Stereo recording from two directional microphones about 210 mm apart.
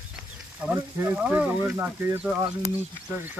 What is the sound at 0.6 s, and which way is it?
Speech, 10° right (ahead or behind).